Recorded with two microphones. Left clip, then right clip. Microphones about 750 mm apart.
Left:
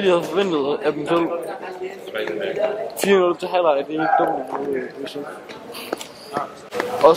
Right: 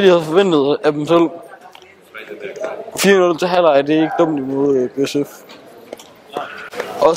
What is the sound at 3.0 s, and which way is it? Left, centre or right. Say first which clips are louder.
Speech: right 5 dB; right.